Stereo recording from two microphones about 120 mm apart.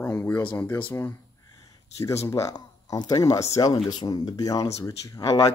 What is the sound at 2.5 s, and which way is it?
Speech, 35° left (ahead or behind).